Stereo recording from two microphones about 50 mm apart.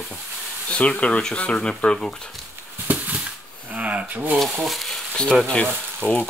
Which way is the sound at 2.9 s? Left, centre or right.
Right.